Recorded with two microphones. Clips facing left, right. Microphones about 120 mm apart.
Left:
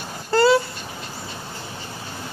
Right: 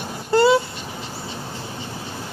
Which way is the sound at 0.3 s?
20° right (ahead or behind).